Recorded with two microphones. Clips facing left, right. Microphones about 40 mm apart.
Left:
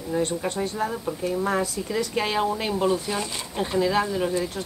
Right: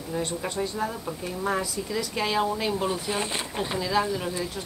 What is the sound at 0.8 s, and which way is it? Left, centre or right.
A woman's voice, left.